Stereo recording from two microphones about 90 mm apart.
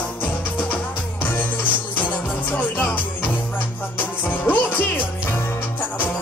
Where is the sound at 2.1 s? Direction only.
15° left (ahead or behind).